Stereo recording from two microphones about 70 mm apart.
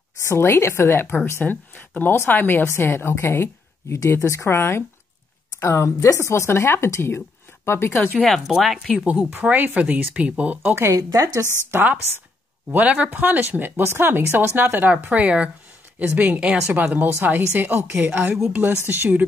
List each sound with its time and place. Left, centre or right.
0.2 s speech: left
1.4 s speech: left
8.2 s speech: centre
9.3 s speech: right
10.8 s speech: right
11.7 s speech: right
12.7 s speech: right
18.3 s speech: centre
18.9 s speech: right